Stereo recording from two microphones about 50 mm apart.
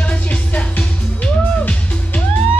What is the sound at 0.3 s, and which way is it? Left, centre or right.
Music, left.